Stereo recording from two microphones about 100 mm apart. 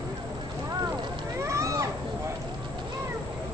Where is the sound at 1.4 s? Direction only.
30° right (ahead or behind).